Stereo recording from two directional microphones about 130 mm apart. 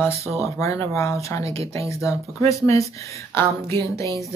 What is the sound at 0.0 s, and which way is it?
Speech, 20° left (ahead or behind).